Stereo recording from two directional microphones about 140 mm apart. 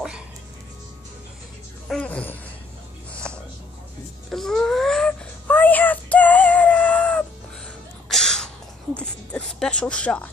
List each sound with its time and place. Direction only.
1.9 s speech: 10° left (ahead or behind)
3.1 s music: 5° left (ahead or behind)
4.3 s a sound: 5° left (ahead or behind)